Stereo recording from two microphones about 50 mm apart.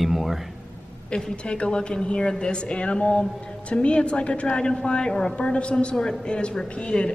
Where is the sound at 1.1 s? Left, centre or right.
Left.